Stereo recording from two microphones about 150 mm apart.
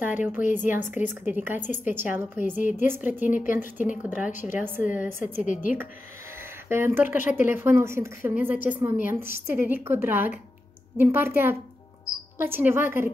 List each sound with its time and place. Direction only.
0.0 s a woman's voice: 10° right (ahead or behind)
5.4 s a woman's voice: 60° left (ahead or behind)
6.7 s a woman's voice: 15° right (ahead or behind)